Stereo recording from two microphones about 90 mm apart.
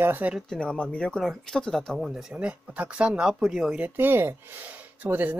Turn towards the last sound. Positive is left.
turn(degrees=-20)  # may be behind; listen again after turning